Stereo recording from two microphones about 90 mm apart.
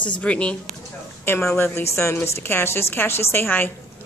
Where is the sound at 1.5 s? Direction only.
25° left (ahead or behind).